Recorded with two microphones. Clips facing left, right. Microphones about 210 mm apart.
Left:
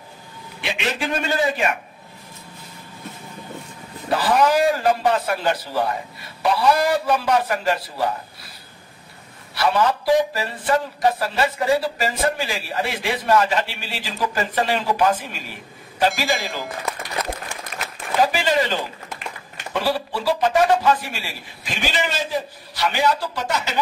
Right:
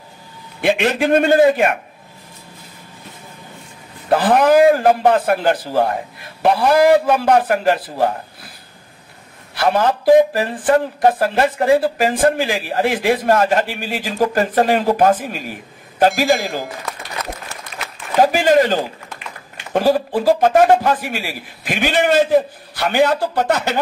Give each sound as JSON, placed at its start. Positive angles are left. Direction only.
{"t": 0.6, "sound": "speech", "side_deg": -50}
{"t": 4.1, "sound": "speech", "side_deg": -55}
{"t": 9.6, "sound": "speech", "side_deg": -50}
{"t": 18.1, "sound": "speech", "side_deg": -45}
{"t": 21.1, "sound": "a man's voice", "side_deg": -10}
{"t": 21.6, "sound": "a man's voice", "side_deg": -55}